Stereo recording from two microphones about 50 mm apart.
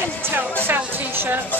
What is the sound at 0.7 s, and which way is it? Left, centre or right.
Music, right.